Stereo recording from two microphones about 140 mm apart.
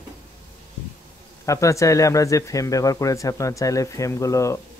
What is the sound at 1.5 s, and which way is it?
Speech, 20° left (ahead or behind).